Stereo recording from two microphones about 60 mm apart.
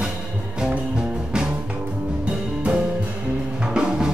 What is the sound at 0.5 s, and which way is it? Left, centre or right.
Music, centre.